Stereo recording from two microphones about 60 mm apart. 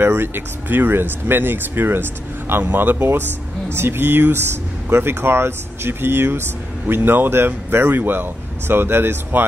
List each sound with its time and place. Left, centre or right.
0.0 s speech: right